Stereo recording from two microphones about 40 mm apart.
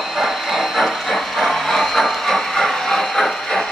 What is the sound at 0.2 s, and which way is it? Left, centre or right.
Train, centre.